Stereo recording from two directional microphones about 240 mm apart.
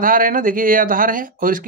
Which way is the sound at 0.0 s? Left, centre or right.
Right.